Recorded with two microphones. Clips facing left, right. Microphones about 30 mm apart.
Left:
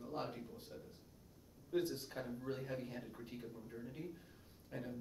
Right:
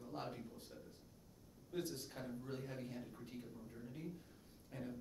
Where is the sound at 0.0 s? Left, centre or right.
Centre.